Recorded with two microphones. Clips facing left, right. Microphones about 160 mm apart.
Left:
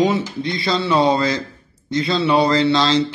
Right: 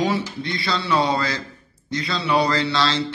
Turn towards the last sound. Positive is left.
turn(degrees=20)  # may be behind; listen again after turning